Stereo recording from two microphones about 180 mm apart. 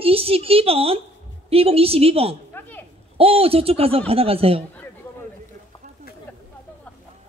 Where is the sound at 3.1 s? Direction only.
30° right (ahead or behind).